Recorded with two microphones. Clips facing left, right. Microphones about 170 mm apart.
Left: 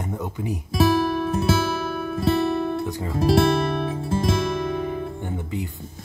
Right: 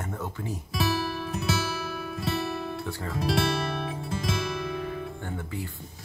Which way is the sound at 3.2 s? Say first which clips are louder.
Left 8 dB; 50° left (ahead or behind).